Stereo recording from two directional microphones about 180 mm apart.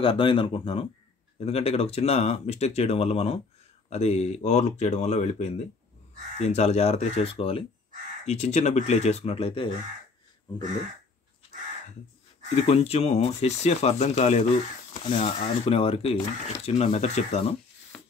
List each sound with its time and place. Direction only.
0.0 s speech: 30° left (ahead or behind)
12.6 s speech: 35° left (ahead or behind)
17.9 s a sound: 5° left (ahead or behind)